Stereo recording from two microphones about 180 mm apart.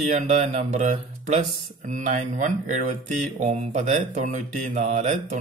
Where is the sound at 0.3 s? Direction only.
40° right (ahead or behind).